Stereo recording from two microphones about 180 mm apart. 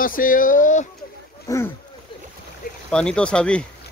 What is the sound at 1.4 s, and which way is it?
Speech, 15° left (ahead or behind).